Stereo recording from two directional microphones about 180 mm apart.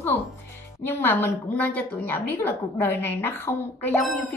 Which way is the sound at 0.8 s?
10° left (ahead or behind).